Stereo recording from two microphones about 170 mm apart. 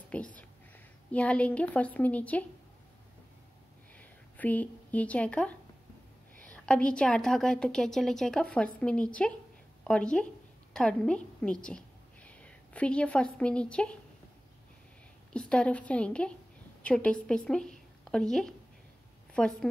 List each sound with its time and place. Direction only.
0.1 s a sound: 10° left (ahead or behind)
1.1 s a woman's voice: 5° left (ahead or behind)
4.0 s a woman's voice: 10° left (ahead or behind)
15.3 s a woman's voice: 5° left (ahead or behind)